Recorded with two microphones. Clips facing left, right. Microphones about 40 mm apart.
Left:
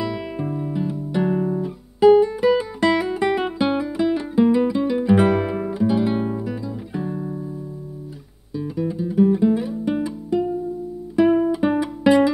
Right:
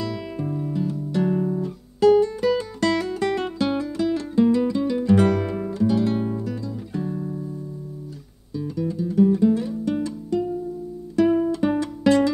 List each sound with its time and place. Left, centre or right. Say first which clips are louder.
0.0 s guitar: left 3 dB; centre
8.5 s music: left 2 dB; centre